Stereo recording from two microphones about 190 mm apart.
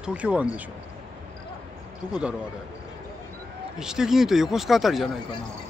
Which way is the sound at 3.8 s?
5° right (ahead or behind).